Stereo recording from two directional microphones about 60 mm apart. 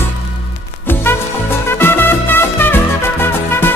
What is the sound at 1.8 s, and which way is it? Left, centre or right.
Music, left.